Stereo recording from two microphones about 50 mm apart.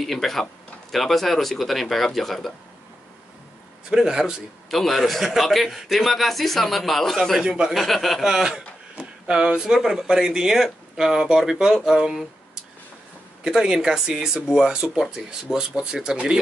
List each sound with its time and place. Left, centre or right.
0.0 s a man's voice: centre
3.9 s speech: centre
4.6 s a man's voice: centre
7.4 s speech: centre
7.7 s a man's voice: centre
8.5 s a sound: centre
9.4 s speech: centre
13.5 s speech: centre